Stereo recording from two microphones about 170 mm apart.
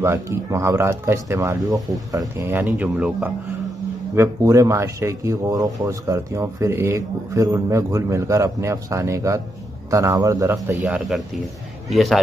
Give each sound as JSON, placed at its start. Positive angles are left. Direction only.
{"t": 0.0, "sound": "speech", "side_deg": -15}